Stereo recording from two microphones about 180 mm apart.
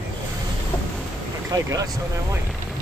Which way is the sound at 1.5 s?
20° right (ahead or behind).